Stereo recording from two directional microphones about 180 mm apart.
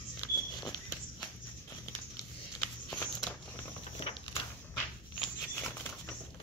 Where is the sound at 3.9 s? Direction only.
30° left (ahead or behind).